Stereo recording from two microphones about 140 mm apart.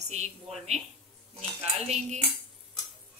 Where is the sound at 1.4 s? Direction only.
50° right (ahead or behind).